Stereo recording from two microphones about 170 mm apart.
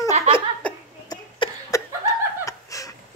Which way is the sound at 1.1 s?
25° left (ahead or behind).